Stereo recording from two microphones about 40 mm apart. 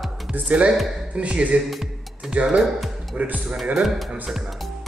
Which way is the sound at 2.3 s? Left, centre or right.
Right.